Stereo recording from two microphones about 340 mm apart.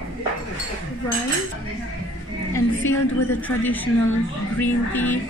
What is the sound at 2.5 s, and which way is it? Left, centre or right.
A woman's voice, centre.